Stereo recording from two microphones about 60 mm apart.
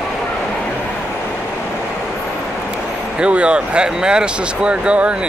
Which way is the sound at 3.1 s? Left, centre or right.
Centre.